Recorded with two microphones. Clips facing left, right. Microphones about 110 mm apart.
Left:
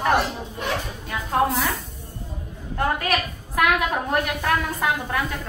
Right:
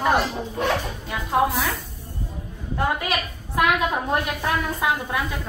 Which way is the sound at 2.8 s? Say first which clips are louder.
Left 1 dB; 15° right (ahead or behind).